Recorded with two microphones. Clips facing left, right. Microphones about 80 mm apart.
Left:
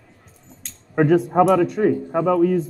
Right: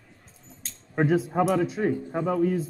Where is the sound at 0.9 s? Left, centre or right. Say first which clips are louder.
Left 7 dB; left.